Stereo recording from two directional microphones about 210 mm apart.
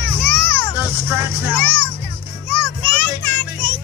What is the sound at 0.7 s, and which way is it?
Music, 10° right (ahead or behind).